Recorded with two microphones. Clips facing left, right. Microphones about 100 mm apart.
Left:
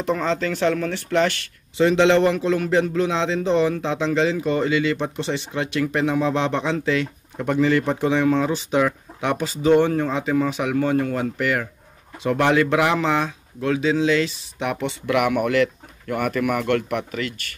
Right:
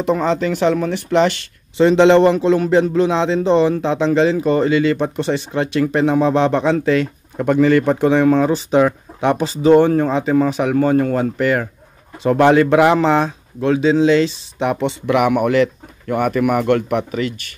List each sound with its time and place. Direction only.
0.0 s speech: 15° right (ahead or behind)
1.8 s a man's voice: 35° right (ahead or behind)